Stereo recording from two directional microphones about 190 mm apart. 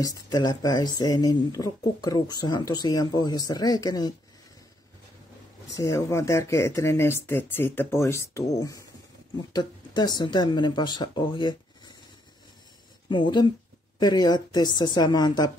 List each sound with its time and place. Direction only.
0.0 s speech: 20° left (ahead or behind)
5.8 s speech: 15° left (ahead or behind)
13.1 s speech: 25° left (ahead or behind)